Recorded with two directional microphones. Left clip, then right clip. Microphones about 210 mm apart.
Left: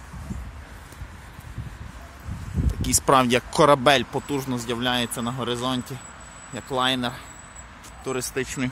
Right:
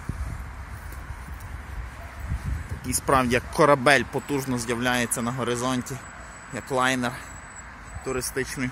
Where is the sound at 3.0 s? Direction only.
20° left (ahead or behind); by 7.2 s centre (ahead or behind).